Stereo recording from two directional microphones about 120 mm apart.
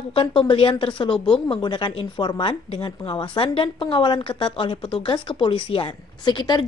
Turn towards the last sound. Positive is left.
turn(degrees=35)  # may be behind; listen again after turning